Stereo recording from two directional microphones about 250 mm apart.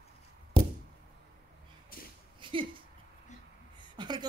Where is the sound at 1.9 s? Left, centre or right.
Left.